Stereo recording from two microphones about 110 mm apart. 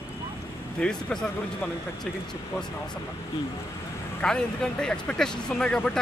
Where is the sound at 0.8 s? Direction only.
5° left (ahead or behind).